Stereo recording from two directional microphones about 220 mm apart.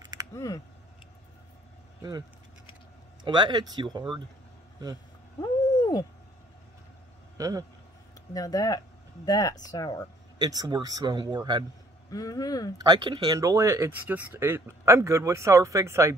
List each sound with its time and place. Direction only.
0.0 s a sound: 20° right (ahead or behind)
0.3 s speech: 15° left (ahead or behind)
3.3 s speech: 20° right (ahead or behind)
5.4 s a sound: 15° left (ahead or behind)
7.3 s a man's voice: 15° right (ahead or behind)
8.3 s speech: 15° left (ahead or behind)
10.4 s speech: 20° right (ahead or behind)
12.1 s speech: 15° left (ahead or behind)
12.7 s speech: 20° right (ahead or behind)